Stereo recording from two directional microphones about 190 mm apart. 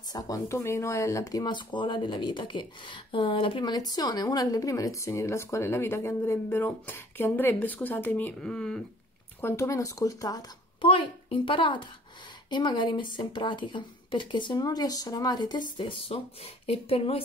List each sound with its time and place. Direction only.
0.1 s a woman's voice: 15° left (ahead or behind)